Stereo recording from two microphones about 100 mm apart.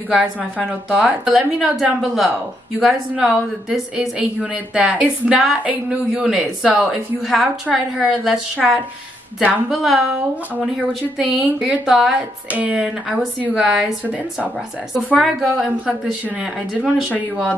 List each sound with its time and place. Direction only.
0.1 s a woman's voice: 15° right (ahead or behind)
12.8 s a woman's voice: 5° right (ahead or behind)